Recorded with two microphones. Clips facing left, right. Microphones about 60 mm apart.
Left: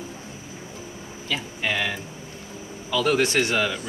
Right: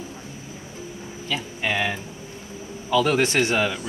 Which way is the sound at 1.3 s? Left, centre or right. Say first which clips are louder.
Right 1 dB; centre.